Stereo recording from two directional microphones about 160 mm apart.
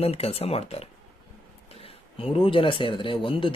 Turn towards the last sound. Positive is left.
turn(degrees=30)  # may be behind; listen again after turning